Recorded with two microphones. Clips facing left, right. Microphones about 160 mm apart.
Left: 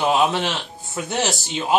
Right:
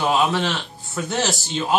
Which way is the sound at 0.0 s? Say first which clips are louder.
Left 1 dB; 20° left (ahead or behind).